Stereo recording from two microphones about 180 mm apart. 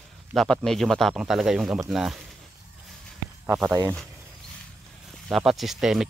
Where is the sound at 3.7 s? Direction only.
15° right (ahead or behind).